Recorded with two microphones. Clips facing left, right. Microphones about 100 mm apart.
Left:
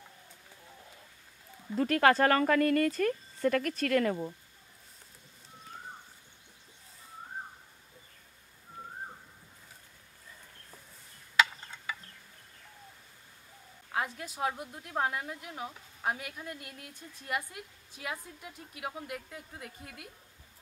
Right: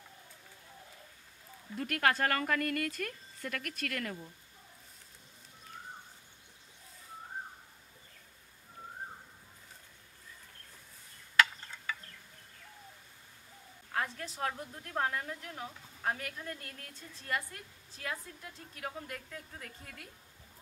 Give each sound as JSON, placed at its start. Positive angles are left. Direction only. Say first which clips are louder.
{"t": 2.0, "sound": "speech", "louder": "left 6 dB", "side_deg": 35}
{"t": 11.3, "sound": "a sound", "louder": "even", "side_deg": 15}
{"t": 13.9, "sound": "a woman's voice", "louder": "left 2 dB", "side_deg": 15}